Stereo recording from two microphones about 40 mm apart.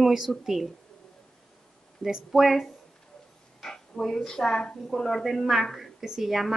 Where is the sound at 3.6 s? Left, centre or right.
Centre.